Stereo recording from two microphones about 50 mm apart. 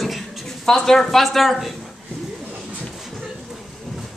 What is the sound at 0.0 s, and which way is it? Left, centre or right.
Speech, centre.